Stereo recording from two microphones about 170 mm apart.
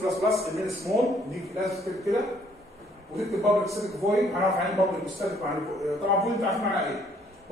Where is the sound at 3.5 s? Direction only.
20° right (ahead or behind).